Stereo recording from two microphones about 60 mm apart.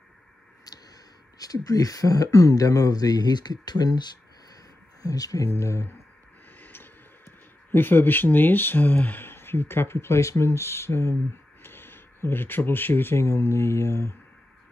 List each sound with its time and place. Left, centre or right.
0.7 s a sound: left
1.4 s speech: left
5.0 s speech: left
5.5 s speech: left
6.6 s speech: left